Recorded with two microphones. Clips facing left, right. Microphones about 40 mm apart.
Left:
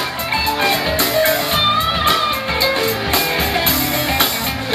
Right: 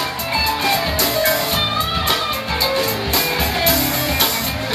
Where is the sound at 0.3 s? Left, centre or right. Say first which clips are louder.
Left 2 dB; left.